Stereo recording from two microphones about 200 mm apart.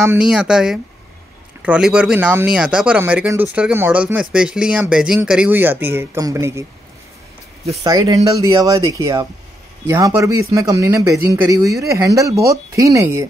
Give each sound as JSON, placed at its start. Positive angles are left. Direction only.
{"t": 0.0, "sound": "speech", "side_deg": -5}
{"t": 7.8, "sound": "speech", "side_deg": -20}